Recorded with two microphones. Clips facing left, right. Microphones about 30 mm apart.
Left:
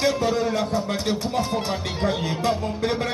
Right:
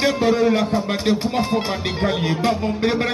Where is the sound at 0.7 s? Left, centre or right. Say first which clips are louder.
Right 4 dB; right.